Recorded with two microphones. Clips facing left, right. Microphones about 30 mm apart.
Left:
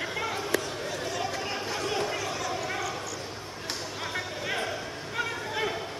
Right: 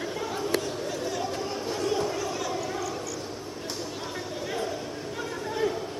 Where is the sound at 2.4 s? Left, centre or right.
Centre.